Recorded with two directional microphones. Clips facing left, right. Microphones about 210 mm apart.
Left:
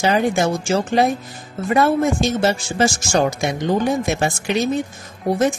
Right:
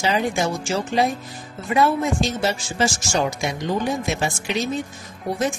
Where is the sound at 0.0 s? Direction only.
55° left (ahead or behind).